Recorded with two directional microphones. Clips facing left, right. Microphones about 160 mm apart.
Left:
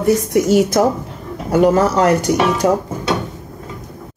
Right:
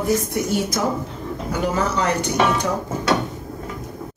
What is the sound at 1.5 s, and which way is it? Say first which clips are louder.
Speech: left 10 dB; 50° left (ahead or behind).